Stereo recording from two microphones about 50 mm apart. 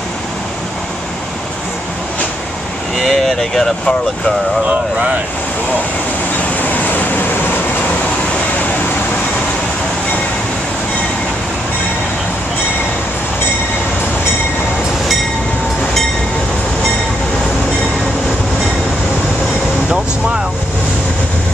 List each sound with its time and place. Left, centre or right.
3.0 s speech: centre
4.6 s speech: right
6.6 s vehicle: left